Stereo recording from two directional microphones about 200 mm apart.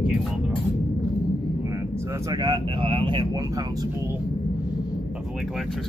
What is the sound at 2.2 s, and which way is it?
Speech, 20° right (ahead or behind).